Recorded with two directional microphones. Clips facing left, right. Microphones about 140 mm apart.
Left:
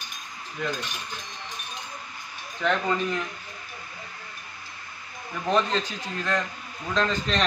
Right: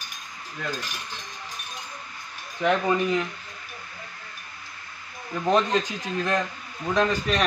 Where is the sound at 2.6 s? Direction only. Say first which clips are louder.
Right 3 dB; 15° right (ahead or behind).